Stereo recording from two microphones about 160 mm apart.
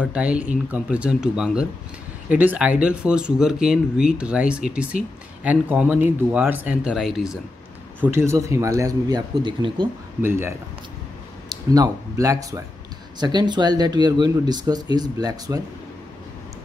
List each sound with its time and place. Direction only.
0.0 s speech: 5° right (ahead or behind)
8.0 s speech: 15° right (ahead or behind)
10.2 s speech: 15° right (ahead or behind)